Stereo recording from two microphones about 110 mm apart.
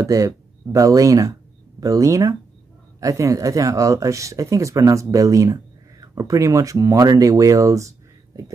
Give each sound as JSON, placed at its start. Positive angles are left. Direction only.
{"t": 0.0, "sound": "speech", "side_deg": -30}